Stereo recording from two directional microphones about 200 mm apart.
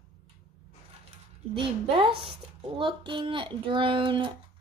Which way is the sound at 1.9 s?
25° right (ahead or behind).